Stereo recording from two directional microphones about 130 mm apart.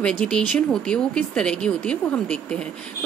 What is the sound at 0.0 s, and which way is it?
Speech, 10° left (ahead or behind).